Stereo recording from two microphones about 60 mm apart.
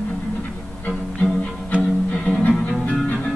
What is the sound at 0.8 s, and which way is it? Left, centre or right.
Music, left.